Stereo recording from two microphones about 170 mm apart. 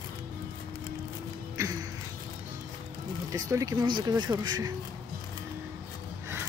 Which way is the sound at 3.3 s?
20° right (ahead or behind).